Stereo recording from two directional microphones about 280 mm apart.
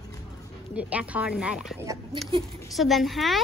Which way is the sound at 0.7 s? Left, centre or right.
Centre.